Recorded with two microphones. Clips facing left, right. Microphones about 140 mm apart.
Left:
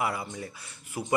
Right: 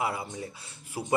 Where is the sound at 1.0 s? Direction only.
10° right (ahead or behind).